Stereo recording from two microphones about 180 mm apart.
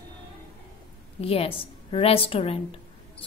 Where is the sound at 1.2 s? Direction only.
30° left (ahead or behind).